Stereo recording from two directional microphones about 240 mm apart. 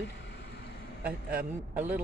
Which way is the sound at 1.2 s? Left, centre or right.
Centre.